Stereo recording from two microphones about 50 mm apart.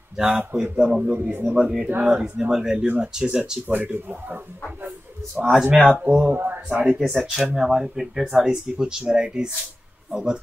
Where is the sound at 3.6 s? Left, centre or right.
Right.